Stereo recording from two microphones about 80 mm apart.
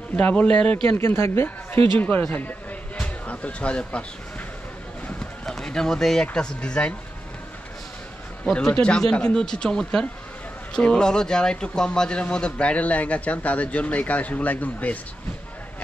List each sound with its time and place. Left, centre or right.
0.1 s a man's voice: centre
0.8 s speech: left
3.0 s music: centre
5.4 s a sound: centre
6.3 s a man's voice: centre
8.8 s a man's voice: centre